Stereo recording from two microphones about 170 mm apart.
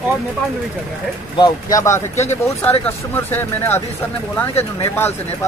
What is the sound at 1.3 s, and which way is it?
Speech, 25° left (ahead or behind).